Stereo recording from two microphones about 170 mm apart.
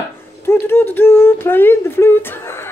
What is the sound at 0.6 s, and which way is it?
Humming, 10° left (ahead or behind).